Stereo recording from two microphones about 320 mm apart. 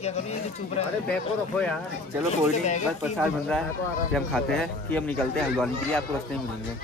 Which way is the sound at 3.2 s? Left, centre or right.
Centre.